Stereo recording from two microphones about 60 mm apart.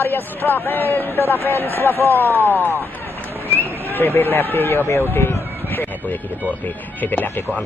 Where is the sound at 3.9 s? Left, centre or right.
Left.